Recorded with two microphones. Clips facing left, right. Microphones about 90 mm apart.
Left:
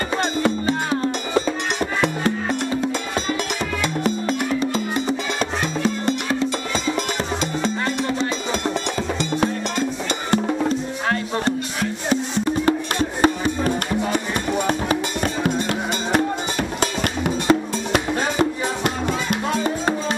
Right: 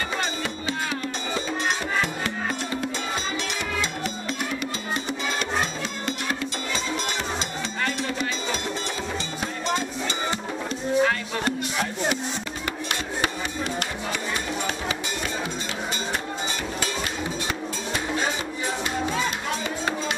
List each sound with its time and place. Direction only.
0.2 s music: 50° left (ahead or behind)
10.7 s music: 35° left (ahead or behind)
13.2 s music: 45° left (ahead or behind)
16.8 s music: 65° left (ahead or behind)